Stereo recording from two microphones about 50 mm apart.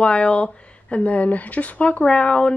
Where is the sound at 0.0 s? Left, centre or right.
Left.